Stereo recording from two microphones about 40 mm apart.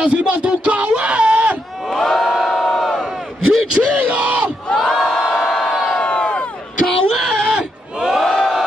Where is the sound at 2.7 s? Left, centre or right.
Centre.